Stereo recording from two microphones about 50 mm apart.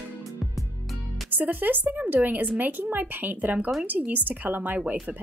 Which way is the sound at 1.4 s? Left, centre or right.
Right.